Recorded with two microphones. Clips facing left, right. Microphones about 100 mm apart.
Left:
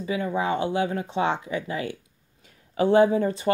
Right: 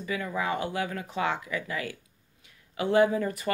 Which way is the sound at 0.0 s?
25° left (ahead or behind).